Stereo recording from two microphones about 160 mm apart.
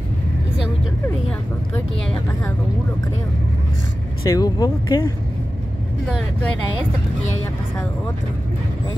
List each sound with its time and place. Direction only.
4.2 s speech: 20° left (ahead or behind)
6.0 s speech: 5° left (ahead or behind)